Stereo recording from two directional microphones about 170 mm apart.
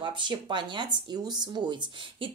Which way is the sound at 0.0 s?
30° right (ahead or behind).